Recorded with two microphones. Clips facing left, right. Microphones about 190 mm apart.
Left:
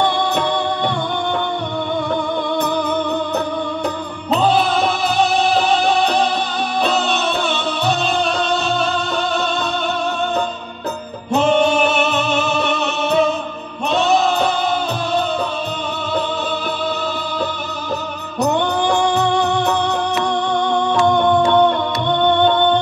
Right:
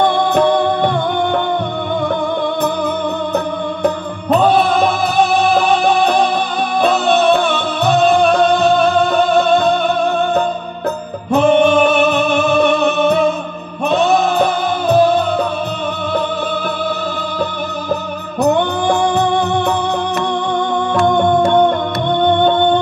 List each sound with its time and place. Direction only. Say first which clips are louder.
0.0 s music: right 4 dB; 55° right (ahead or behind)
3.8 s music: right 6 dB; 55° right (ahead or behind)
11.4 s music: right 4 dB; 55° right (ahead or behind)
20.9 s music: right 2 dB; 55° right (ahead or behind)